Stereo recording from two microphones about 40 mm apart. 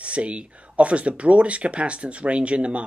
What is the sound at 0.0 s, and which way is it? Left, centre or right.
Speech, right.